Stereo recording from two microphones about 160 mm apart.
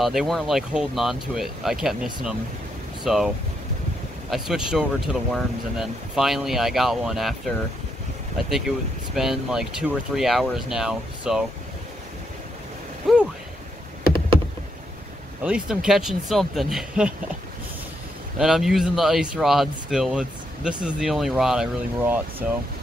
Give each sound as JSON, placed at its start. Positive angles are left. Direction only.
{"t": 0.0, "sound": "speech", "side_deg": 0}
{"t": 4.3, "sound": "speech", "side_deg": -5}
{"t": 8.5, "sound": "speech", "side_deg": 0}
{"t": 13.0, "sound": "speech", "side_deg": 0}
{"t": 15.4, "sound": "speech", "side_deg": -5}
{"t": 18.4, "sound": "speech", "side_deg": 0}
{"t": 22.4, "sound": "speech", "side_deg": -55}